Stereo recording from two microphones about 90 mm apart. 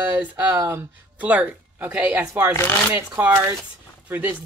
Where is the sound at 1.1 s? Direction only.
15° right (ahead or behind).